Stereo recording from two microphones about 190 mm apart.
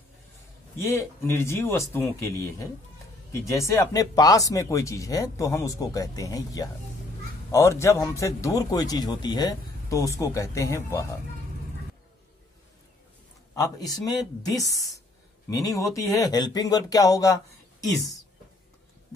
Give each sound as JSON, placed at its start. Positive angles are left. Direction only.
{"t": 0.8, "sound": "a man's voice", "side_deg": 15}
{"t": 13.6, "sound": "a man's voice", "side_deg": 20}